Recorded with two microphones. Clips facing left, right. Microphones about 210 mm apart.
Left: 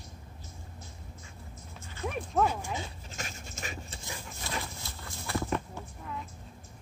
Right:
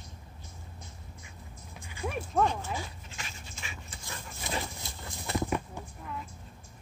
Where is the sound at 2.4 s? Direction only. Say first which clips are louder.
Even; 10° left (ahead or behind).